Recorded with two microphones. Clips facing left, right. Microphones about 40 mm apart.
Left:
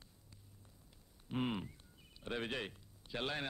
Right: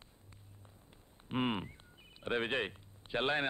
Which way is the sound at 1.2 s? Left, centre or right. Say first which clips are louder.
Right 4 dB; right.